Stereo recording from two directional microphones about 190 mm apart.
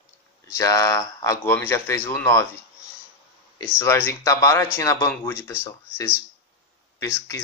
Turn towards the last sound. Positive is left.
turn(degrees=15)  # may be behind; listen again after turning